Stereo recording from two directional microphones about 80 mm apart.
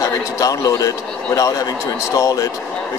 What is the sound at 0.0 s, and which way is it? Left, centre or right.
A man's voice, left.